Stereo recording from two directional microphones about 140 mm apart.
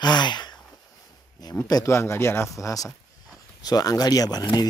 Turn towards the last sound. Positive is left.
turn(degrees=30)  # may be behind; listen again after turning